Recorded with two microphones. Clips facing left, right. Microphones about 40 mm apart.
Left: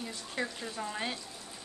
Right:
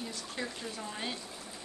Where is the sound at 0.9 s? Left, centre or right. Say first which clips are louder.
Left 2 dB; centre.